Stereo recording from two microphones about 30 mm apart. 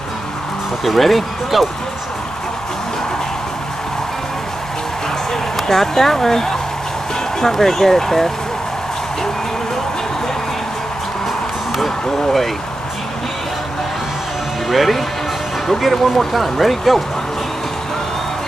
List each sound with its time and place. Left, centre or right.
0.8 s speech: centre
5.3 s speech: centre
14.7 s speech: centre